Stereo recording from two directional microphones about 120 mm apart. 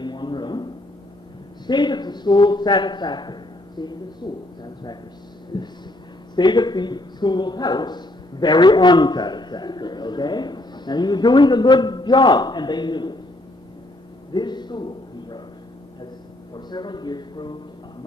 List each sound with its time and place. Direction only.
0.0 s a sound: 40° left (ahead or behind)
1.7 s speech: 40° left (ahead or behind)
5.5 s speech: 35° left (ahead or behind)
14.3 s a man's voice: 40° left (ahead or behind)
16.5 s speech: 40° left (ahead or behind)